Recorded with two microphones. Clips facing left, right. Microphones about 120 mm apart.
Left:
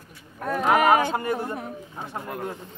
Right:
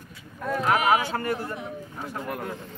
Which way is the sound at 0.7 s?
45° left (ahead or behind).